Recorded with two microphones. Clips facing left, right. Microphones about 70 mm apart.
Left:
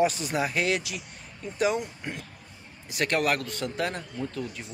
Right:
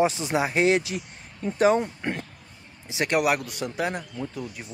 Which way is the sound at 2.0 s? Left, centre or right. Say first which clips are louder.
Right 6 dB; right.